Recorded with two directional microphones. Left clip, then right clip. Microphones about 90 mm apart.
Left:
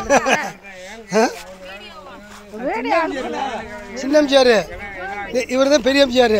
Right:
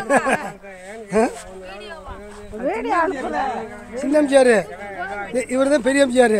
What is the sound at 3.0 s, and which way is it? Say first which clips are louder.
Speech: right 1 dB; 5° left (ahead or behind).